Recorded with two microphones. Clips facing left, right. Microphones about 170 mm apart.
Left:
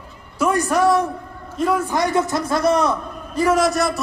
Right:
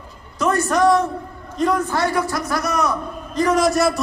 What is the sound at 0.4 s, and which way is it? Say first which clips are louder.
A woman's voice: even; 10° left (ahead or behind).